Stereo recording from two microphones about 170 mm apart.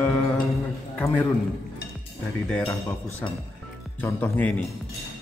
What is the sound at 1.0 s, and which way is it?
Speech, 5° left (ahead or behind).